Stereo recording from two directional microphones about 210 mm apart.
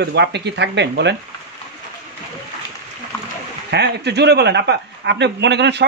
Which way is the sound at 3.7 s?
55° right (ahead or behind).